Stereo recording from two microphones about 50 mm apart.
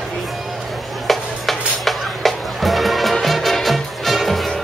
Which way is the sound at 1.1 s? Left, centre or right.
Centre.